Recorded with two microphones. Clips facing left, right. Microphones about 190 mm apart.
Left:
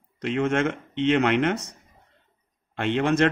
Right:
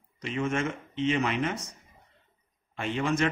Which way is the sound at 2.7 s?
70° left (ahead or behind).